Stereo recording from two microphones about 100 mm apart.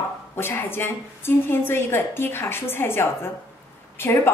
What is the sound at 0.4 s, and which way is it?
A woman's voice, 25° left (ahead or behind).